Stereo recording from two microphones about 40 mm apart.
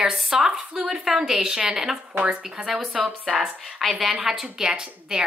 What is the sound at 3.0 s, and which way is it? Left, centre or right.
Speech, right.